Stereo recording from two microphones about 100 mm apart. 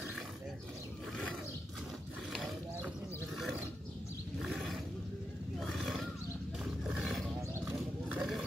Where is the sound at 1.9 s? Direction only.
Centre (ahead or behind).